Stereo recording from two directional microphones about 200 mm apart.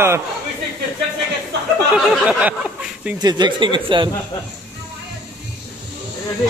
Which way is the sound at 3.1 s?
20° right (ahead or behind).